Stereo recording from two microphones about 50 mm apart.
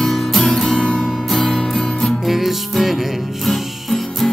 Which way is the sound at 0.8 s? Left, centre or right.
Centre.